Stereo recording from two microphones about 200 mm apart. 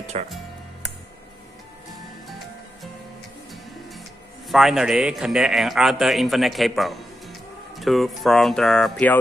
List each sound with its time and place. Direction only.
0.1 s speech: 35° right (ahead or behind)
4.5 s a man's voice: centre (ahead or behind)